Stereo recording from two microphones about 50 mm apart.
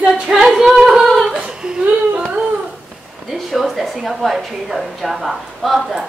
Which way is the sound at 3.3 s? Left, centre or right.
Centre.